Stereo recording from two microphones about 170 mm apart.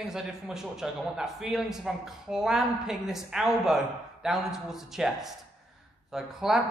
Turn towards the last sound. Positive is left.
turn(degrees=0)  # may be behind; listen again after turning